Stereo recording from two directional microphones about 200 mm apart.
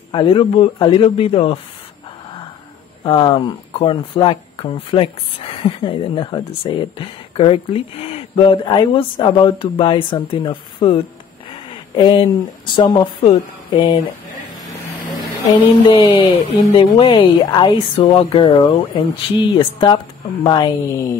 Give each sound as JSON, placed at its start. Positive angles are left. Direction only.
{"t": 0.1, "sound": "speech", "side_deg": 25}
{"t": 3.0, "sound": "speech", "side_deg": 20}
{"t": 15.5, "sound": "speech", "side_deg": 20}